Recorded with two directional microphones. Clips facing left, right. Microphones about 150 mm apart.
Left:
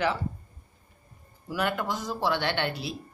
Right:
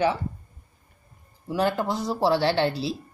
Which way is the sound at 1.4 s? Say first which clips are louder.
Right 5 dB; 30° right (ahead or behind).